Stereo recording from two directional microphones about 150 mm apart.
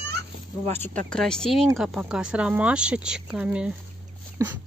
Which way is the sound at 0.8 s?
5° left (ahead or behind).